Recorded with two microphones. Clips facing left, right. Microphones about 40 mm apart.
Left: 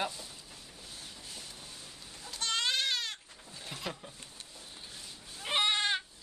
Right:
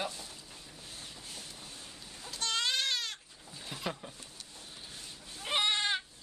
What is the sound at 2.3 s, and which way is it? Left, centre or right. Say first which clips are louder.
Baby cry: left 1 dB; centre.